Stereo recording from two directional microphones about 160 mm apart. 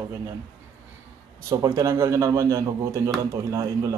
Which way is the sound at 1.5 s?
20° right (ahead or behind).